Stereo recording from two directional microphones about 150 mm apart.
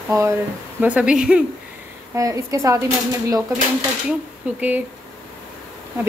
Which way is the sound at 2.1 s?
20° right (ahead or behind).